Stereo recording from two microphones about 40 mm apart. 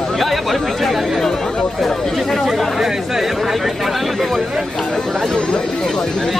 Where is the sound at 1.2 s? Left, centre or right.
Centre.